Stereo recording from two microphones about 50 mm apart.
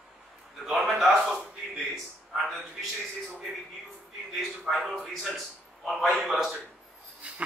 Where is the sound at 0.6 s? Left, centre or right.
Centre.